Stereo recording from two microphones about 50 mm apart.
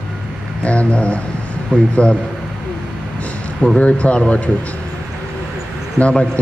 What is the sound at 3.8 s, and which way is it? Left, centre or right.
Speech, left.